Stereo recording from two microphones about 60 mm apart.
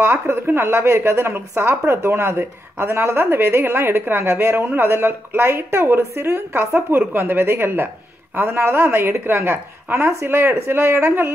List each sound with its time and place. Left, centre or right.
0.0 s speech: right